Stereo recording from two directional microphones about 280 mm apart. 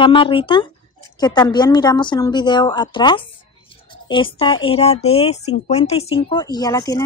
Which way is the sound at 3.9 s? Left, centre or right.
Centre.